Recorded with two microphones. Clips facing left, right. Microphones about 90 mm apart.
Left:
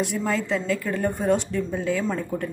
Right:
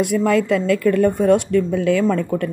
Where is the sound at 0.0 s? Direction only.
65° right (ahead or behind).